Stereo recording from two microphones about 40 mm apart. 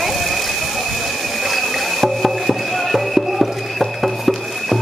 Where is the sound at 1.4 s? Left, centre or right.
Centre.